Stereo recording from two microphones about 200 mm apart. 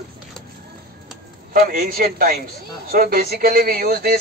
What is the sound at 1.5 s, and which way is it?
Speech, 45° right (ahead or behind).